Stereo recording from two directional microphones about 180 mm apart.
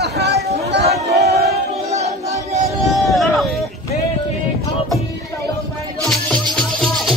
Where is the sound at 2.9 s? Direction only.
Centre (ahead or behind).